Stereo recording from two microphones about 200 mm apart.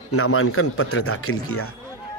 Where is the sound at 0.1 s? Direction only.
90° left.